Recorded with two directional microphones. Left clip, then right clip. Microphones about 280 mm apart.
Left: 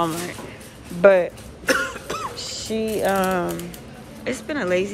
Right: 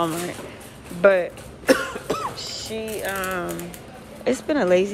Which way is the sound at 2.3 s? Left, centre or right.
Centre.